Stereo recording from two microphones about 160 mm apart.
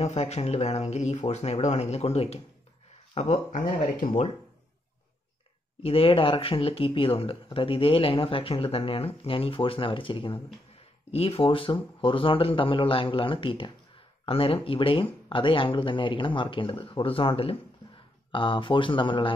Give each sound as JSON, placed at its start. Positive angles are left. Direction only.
{"t": 0.0, "sound": "speech", "side_deg": 40}
{"t": 3.5, "sound": "speech", "side_deg": 55}
{"t": 5.8, "sound": "speech", "side_deg": 35}